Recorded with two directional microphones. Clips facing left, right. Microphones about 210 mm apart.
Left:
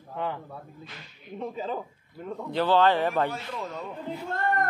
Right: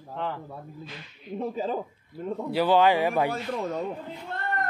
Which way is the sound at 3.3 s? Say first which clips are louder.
Right 6 dB; 45° right (ahead or behind).